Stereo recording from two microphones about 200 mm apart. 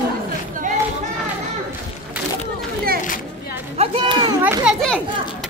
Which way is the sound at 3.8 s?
25° right (ahead or behind).